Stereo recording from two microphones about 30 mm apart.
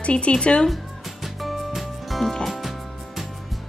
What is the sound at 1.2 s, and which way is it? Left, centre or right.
Music, centre.